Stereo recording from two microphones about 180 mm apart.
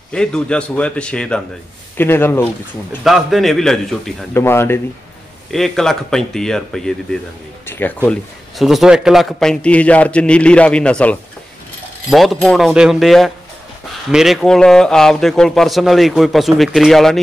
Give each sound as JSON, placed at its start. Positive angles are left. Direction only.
{"t": 0.1, "sound": "a man's voice", "side_deg": 5}
{"t": 3.0, "sound": "a man's voice", "side_deg": 0}
{"t": 4.3, "sound": "speech", "side_deg": 15}
{"t": 5.5, "sound": "a man's voice", "side_deg": 0}
{"t": 8.5, "sound": "a man's voice", "side_deg": 0}